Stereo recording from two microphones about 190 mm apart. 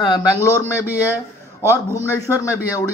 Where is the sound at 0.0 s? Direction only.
20° left (ahead or behind).